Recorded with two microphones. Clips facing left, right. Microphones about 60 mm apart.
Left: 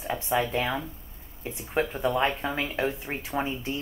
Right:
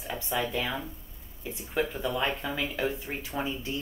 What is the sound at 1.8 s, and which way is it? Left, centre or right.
Speech, left.